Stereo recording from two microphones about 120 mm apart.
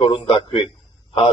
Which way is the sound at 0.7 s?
45° left (ahead or behind).